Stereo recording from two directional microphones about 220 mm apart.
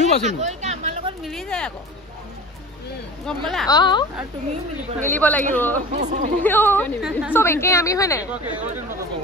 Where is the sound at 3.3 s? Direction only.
Centre (ahead or behind).